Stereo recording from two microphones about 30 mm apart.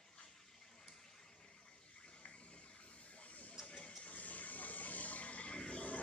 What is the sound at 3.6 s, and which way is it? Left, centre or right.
Water, left.